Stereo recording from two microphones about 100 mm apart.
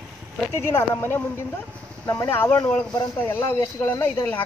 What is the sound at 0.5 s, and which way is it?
Speech, 25° left (ahead or behind).